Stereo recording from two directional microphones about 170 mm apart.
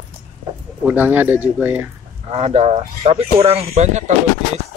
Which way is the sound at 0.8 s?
10° right (ahead or behind).